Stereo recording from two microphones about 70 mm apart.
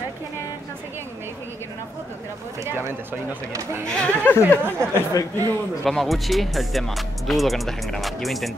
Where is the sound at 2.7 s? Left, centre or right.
Right.